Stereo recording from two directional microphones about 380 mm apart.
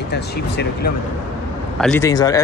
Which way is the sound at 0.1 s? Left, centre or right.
Left.